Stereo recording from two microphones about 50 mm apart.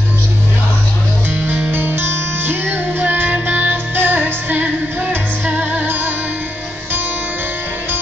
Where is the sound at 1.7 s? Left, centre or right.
Right.